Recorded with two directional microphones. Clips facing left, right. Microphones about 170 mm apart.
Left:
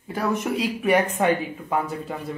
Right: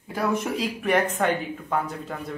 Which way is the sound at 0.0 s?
Centre (ahead or behind).